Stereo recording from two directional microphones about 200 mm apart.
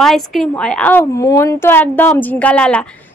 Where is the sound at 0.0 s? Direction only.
Centre (ahead or behind).